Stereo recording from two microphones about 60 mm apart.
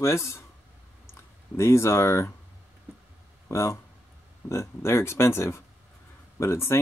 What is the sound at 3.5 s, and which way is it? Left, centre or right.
Speech, left.